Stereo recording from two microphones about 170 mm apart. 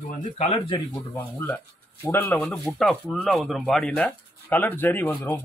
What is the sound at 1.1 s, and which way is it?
Speech, 10° left (ahead or behind).